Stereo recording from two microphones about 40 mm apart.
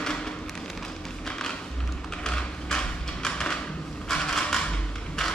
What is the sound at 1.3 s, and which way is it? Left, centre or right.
Music, centre.